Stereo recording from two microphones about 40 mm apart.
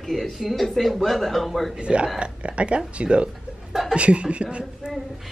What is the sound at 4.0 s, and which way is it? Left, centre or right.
Speech, right.